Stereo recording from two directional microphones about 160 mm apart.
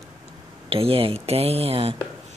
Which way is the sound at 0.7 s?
35° right (ahead or behind).